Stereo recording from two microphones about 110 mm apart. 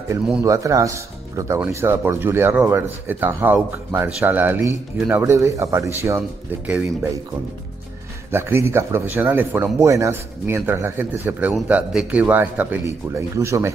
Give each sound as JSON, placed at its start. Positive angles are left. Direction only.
{"t": 0.5, "sound": "speech", "side_deg": -30}
{"t": 6.6, "sound": "speech", "side_deg": -10}
{"t": 8.3, "sound": "speech", "side_deg": -20}
{"t": 9.8, "sound": "speech", "side_deg": -30}